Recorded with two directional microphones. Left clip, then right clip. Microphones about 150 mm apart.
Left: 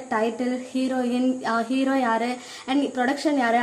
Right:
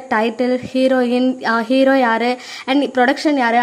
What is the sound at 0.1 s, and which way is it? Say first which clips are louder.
Speech: right 8 dB; 45° right (ahead or behind).